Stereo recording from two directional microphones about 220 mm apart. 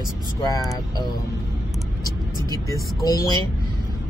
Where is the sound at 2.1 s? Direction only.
20° right (ahead or behind).